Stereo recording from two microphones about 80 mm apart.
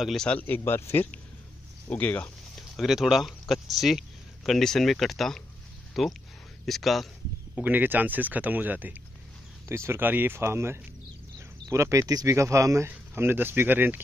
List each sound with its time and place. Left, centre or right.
0.0 s speech: centre
0.3 s speech: left
1.9 s speech: centre
2.5 s speech: centre
7.6 s speech: right
9.7 s speech: right
13.1 s speech: right